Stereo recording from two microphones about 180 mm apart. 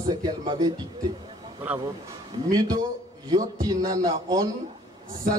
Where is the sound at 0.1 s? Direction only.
20° right (ahead or behind).